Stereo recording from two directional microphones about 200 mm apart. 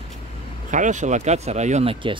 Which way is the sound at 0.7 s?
40° right (ahead or behind).